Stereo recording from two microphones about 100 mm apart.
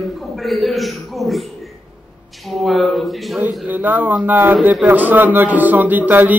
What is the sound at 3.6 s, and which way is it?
A man's voice, 15° right (ahead or behind).